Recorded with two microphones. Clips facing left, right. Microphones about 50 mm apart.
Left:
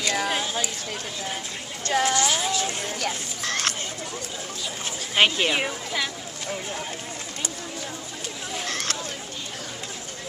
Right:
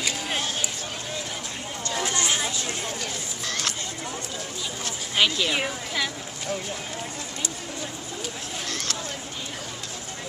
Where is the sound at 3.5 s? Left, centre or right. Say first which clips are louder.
Left 3 dB; left.